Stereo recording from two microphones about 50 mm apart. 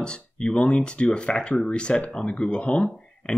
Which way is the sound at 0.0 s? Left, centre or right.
Centre.